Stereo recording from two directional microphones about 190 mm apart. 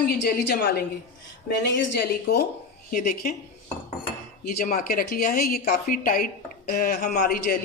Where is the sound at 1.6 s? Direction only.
55° left (ahead or behind).